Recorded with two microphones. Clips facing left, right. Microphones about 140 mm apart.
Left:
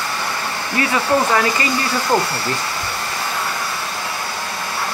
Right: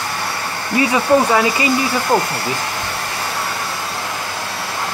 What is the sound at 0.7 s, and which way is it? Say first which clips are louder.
Speech: right 4 dB; 15° right (ahead or behind).